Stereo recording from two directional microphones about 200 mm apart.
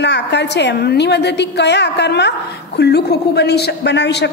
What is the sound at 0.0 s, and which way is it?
A woman's voice, 60° left (ahead or behind).